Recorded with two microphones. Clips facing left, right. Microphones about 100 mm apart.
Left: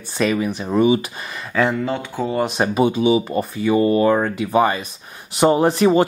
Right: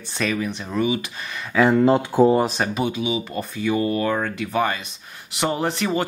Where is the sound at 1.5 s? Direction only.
5° right (ahead or behind).